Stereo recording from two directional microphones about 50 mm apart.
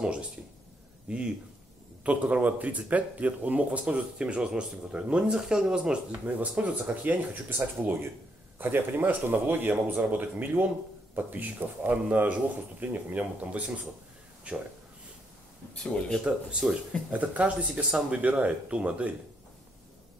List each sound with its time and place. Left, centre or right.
1.0 s a man's voice: right
15.7 s speech: centre
16.3 s speech: centre